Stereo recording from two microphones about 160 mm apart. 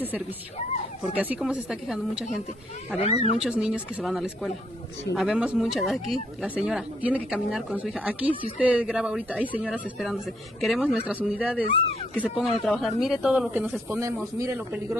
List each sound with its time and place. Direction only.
1.0 s speech: 10° right (ahead or behind)
3.0 s speech: 40° left (ahead or behind)
3.3 s speech: 5° right (ahead or behind)